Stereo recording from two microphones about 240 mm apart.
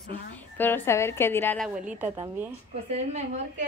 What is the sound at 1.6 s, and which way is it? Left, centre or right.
Speech, centre.